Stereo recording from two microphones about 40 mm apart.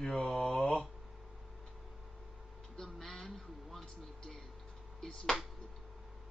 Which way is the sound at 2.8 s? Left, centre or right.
Centre.